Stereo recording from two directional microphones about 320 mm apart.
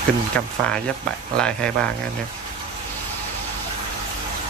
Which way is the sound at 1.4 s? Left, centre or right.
Centre.